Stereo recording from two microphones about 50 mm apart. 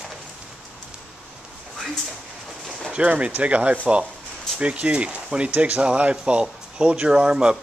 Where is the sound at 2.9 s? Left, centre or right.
Right.